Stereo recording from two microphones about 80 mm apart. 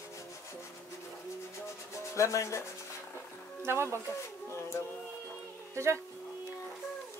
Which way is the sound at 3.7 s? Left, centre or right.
Right.